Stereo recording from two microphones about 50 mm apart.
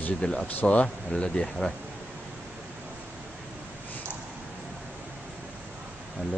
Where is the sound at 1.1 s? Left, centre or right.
Centre.